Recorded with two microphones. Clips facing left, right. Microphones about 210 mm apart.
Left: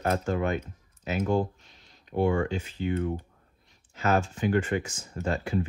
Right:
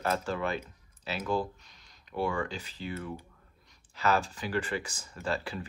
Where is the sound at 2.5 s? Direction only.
35° right (ahead or behind).